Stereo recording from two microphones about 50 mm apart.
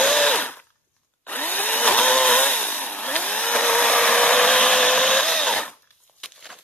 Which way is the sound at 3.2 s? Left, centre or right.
Centre.